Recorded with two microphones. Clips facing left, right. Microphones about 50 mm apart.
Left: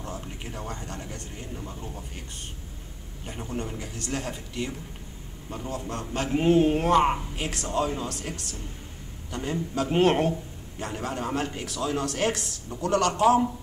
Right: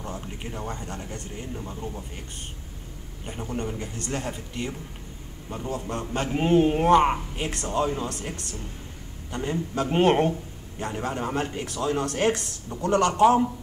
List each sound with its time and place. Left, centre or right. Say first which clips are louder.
0.4 s a man's voice: right 2 dB; centre
3.3 s a man's voice: right 2 dB; centre